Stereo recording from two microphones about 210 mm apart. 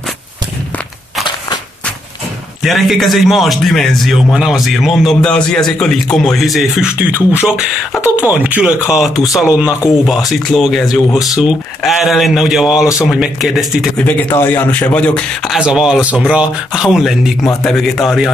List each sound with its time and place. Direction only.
2.6 s speech: centre (ahead or behind)
11.1 s speech: 15° left (ahead or behind)
11.4 s speech: centre (ahead or behind)